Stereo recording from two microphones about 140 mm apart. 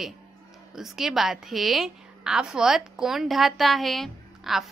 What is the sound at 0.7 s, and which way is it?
A woman's voice, centre (ahead or behind).